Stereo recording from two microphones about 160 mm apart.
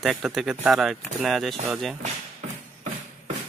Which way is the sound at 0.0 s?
Centre (ahead or behind).